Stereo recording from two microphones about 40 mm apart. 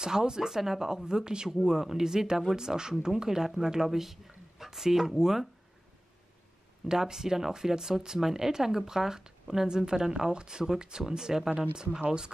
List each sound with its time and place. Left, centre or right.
0.0 s speech: centre
6.9 s speech: centre